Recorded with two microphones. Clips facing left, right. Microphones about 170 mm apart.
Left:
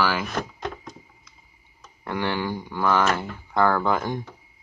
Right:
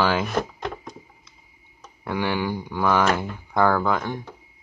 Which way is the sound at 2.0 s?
10° right (ahead or behind).